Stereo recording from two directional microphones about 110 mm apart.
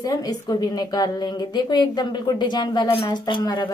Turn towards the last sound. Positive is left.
turn(degrees=40)  # may be behind; listen again after turning